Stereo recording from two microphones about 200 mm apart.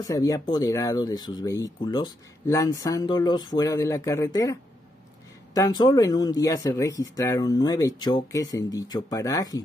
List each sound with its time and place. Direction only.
0.0 s speech: 15° left (ahead or behind)